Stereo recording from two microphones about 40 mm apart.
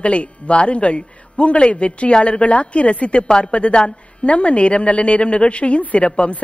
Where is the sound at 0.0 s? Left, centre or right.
Left.